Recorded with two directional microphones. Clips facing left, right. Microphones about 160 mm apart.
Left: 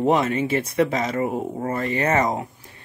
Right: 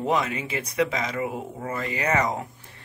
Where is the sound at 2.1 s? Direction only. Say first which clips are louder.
Left 1 dB; 25° left (ahead or behind).